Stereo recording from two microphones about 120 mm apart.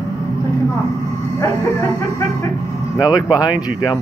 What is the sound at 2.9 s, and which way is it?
Speech, 35° left (ahead or behind).